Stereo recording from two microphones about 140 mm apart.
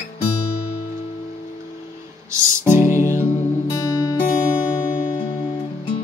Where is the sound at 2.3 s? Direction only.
15° right (ahead or behind).